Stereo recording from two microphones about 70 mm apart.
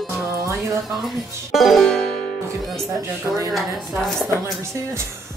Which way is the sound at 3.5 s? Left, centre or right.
Centre.